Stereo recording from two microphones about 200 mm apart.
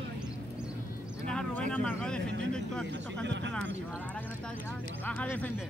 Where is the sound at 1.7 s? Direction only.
5° left (ahead or behind).